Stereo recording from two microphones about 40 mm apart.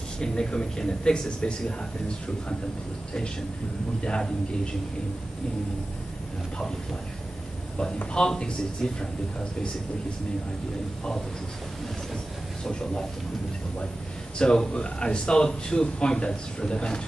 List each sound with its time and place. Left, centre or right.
0.2 s speech: centre
8.1 s speech: left
14.4 s speech: centre